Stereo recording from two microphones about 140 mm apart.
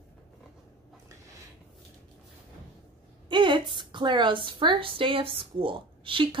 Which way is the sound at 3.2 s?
35° right (ahead or behind).